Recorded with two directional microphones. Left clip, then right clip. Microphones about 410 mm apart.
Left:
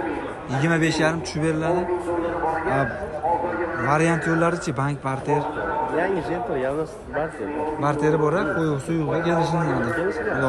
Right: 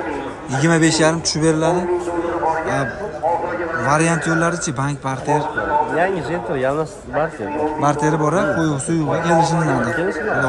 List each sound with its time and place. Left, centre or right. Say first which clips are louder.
0.6 s a man's voice: right 6 dB; centre
3.8 s a man's voice: right 4 dB; centre
5.9 s speech: right 4 dB; right
7.8 s a man's voice: right 2 dB; centre